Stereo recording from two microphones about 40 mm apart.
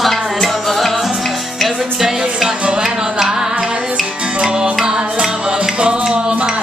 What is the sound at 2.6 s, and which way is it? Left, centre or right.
Music, right.